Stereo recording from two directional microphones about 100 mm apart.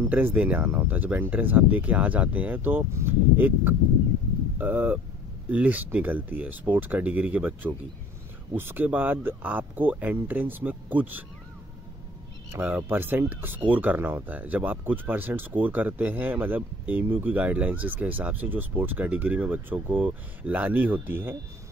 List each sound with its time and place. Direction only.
0.0 s speech: 20° right (ahead or behind)
12.4 s speech: 20° right (ahead or behind)